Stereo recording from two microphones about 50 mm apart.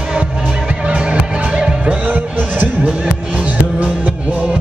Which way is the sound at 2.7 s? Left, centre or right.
Right.